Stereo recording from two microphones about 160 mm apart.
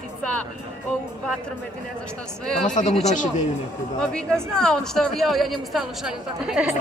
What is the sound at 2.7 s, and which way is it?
Speech, 50° left (ahead or behind).